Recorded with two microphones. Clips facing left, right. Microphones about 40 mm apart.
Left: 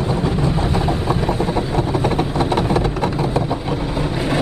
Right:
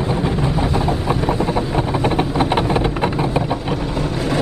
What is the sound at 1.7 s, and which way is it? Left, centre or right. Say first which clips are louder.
Vehicle: even; centre.